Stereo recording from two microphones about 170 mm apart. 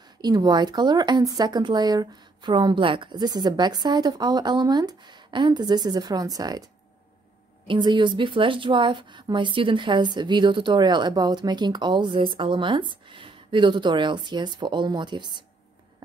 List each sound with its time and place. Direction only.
0.2 s a woman's voice: 25° right (ahead or behind)
7.6 s a woman's voice: 25° right (ahead or behind)